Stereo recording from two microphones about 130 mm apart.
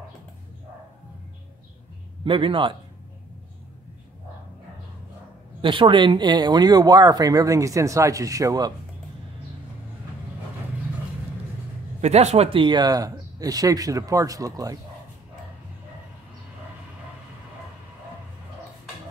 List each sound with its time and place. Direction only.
2.2 s speech: 40° right (ahead or behind)
5.6 s speech: 40° right (ahead or behind)
12.0 s speech: 60° right (ahead or behind)
12.5 s speech: 35° right (ahead or behind)